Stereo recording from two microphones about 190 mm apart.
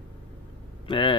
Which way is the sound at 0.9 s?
25° left (ahead or behind).